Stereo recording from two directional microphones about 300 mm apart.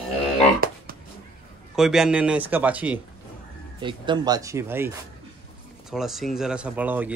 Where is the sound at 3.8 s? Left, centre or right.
Centre.